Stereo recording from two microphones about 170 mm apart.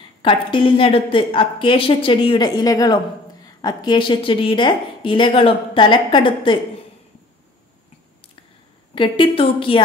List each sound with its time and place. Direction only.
0.2 s a woman's voice: 30° left (ahead or behind)
8.9 s a woman's voice: 30° left (ahead or behind)